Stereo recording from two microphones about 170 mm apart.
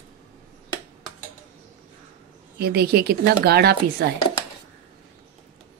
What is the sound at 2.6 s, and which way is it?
Speech, 70° right (ahead or behind).